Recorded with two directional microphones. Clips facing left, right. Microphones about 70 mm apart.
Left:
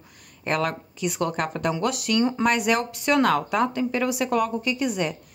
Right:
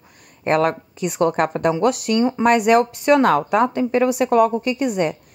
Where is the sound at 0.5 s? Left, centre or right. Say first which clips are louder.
Right 7 dB; right.